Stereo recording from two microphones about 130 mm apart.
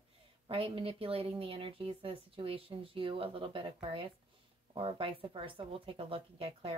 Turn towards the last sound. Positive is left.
turn(degrees=-45)  # may be behind; listen again after turning